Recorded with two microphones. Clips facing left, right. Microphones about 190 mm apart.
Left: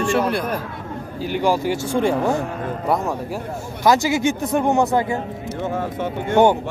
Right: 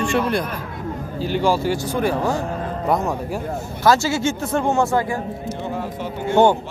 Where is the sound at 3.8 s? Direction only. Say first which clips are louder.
Left 1 dB; 15° left (ahead or behind).